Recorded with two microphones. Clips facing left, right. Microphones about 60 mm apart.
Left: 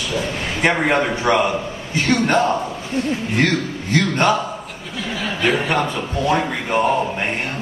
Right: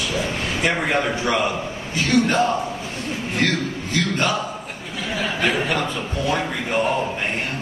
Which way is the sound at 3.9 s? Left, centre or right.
Left.